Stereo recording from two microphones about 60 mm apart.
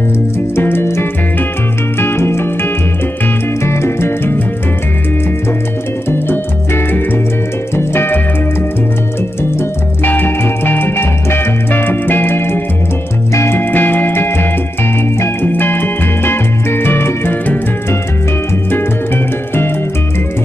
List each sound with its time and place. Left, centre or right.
0.6 s music: left
6.0 s music: left
10.0 s music: left
13.3 s music: left
13.6 s music: left
15.4 s music: left